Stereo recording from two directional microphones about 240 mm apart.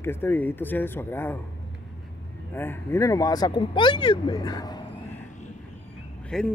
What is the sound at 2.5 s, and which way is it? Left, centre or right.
Speech, centre.